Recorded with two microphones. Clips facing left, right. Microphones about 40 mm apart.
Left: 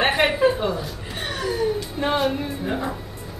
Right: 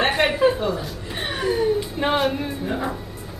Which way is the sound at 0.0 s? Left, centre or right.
Centre.